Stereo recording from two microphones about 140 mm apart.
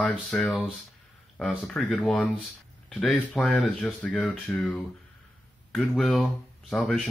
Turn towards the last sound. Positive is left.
turn(degrees=5)  # may be behind; listen again after turning